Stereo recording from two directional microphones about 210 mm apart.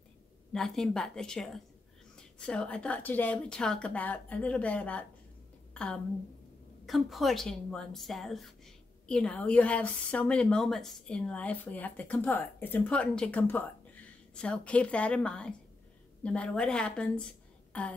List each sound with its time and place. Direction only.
0.5 s a woman's voice: centre (ahead or behind)
6.9 s a woman's voice: centre (ahead or behind)